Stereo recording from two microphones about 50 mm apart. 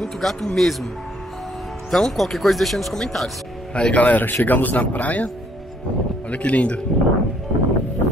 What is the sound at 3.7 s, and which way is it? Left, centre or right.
Speech, left.